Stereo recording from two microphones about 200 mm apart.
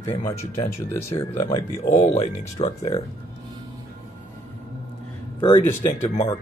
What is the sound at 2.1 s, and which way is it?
Speech, 30° left (ahead or behind).